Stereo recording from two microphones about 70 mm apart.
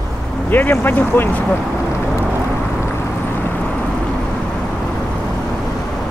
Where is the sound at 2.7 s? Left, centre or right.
Left.